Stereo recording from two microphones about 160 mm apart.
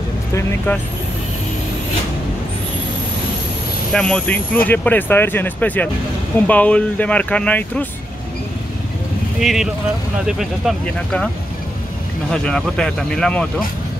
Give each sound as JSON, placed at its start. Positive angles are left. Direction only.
{"t": 0.3, "sound": "speech", "side_deg": 15}
{"t": 3.9, "sound": "speech", "side_deg": 5}
{"t": 9.4, "sound": "speech", "side_deg": 0}
{"t": 12.3, "sound": "speech", "side_deg": 5}